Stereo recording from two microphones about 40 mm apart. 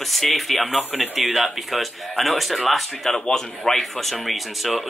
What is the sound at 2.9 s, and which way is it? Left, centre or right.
Speech, centre.